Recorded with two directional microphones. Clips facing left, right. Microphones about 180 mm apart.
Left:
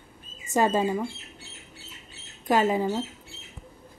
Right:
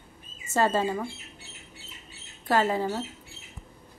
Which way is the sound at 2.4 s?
15° left (ahead or behind).